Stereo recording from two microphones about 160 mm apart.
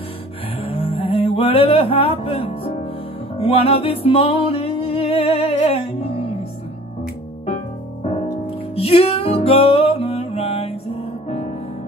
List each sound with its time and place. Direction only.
0.6 s a sound: 35° left (ahead or behind)
3.3 s music: 35° left (ahead or behind)
8.7 s music: 35° left (ahead or behind)